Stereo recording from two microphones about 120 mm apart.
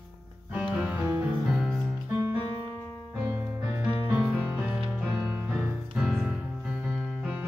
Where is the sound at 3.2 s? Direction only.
20° right (ahead or behind).